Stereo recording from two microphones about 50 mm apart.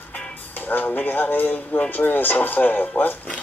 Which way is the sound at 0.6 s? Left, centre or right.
Left.